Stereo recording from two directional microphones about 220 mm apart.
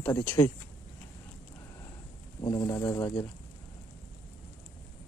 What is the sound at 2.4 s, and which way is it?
Speech, 20° left (ahead or behind).